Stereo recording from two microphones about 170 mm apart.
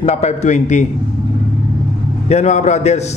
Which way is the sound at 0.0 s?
40° left (ahead or behind).